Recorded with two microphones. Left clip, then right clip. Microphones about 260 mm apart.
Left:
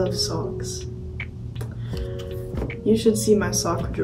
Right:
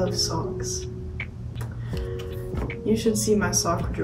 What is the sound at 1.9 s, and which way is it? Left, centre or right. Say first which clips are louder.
Music: even; centre.